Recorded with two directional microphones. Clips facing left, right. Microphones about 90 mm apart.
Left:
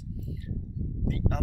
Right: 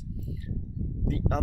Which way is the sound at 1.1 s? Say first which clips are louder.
Right 1 dB; 25° right (ahead or behind).